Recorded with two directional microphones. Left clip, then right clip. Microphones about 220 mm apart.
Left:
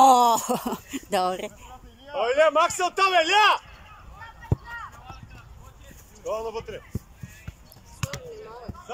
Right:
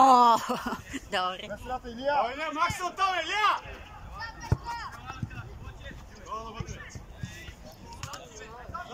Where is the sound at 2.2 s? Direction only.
45° left (ahead or behind).